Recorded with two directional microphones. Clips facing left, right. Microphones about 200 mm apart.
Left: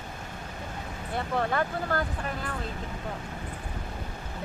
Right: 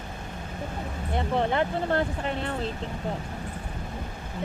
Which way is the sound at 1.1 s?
20° right (ahead or behind).